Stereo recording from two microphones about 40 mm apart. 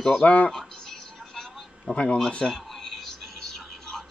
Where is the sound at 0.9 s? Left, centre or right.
Centre.